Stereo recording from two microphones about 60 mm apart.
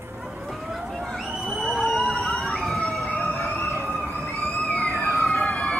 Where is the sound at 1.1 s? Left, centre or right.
Centre.